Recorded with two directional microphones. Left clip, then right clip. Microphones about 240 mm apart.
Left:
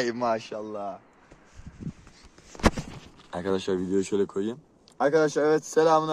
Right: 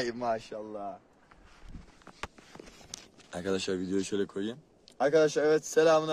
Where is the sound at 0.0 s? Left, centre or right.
Left.